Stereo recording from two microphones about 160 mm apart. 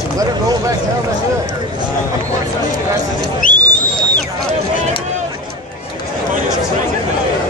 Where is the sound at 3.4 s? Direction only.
55° left (ahead or behind).